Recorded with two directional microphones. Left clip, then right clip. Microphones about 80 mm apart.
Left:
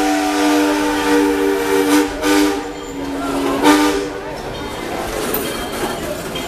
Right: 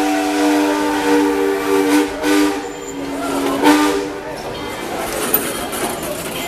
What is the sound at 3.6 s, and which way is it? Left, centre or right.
Vehicle, centre.